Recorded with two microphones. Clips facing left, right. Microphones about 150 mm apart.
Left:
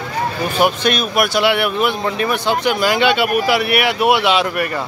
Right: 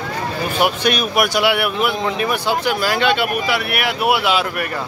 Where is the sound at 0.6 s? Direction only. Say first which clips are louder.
Left 2 dB; 10° right (ahead or behind).